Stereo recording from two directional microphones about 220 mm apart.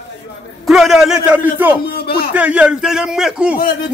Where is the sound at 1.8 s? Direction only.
45° left (ahead or behind).